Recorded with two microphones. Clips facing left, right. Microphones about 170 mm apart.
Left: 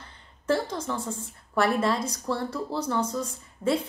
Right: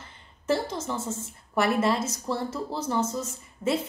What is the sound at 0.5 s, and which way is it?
A woman's voice, 25° right (ahead or behind).